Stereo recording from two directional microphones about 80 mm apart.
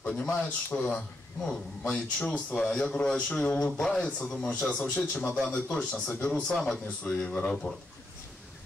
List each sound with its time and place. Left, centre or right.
0.1 s a man's voice: centre